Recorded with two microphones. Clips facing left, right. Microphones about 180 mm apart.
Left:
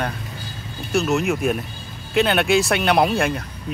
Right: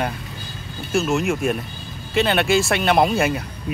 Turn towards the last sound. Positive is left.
turn(degrees=-5)  # may be behind; listen again after turning